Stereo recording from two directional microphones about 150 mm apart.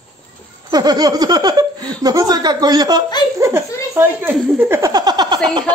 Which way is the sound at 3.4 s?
20° right (ahead or behind).